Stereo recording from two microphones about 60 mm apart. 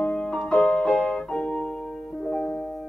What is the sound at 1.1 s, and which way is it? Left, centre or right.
Piano, centre.